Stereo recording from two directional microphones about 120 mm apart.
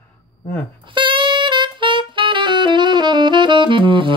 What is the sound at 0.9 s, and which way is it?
Saxophone, 45° right (ahead or behind).